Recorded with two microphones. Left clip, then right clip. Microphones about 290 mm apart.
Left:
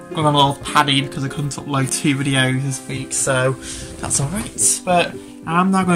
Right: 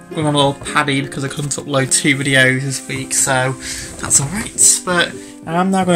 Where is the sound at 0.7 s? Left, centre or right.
Centre.